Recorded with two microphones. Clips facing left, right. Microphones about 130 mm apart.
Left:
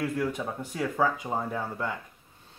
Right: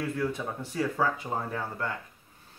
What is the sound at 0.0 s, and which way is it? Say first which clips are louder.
Speech: left 1 dB; 15° left (ahead or behind).